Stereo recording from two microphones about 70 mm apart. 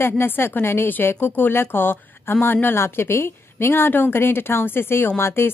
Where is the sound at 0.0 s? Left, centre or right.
Left.